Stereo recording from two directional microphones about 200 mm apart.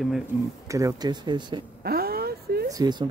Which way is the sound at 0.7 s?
15° right (ahead or behind).